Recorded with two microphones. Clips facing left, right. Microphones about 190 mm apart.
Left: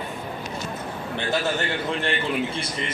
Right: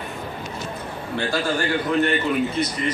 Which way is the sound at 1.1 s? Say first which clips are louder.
Right 2 dB; 25° left (ahead or behind).